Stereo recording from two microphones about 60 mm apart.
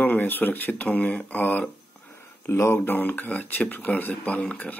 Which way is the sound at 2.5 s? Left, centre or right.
Left.